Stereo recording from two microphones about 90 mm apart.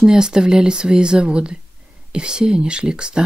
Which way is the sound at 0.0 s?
5° right (ahead or behind).